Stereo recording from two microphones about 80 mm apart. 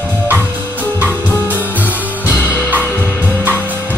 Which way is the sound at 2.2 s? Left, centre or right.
Left.